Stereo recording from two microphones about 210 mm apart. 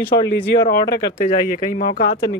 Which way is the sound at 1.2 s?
30° left (ahead or behind).